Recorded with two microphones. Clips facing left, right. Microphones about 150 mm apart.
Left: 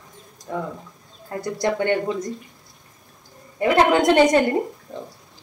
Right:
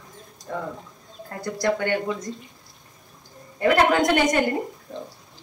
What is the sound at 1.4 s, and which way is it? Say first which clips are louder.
Speech: left 1 dB; 20° left (ahead or behind).